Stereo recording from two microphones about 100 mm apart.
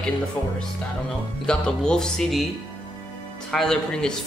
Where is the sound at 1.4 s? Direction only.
10° left (ahead or behind).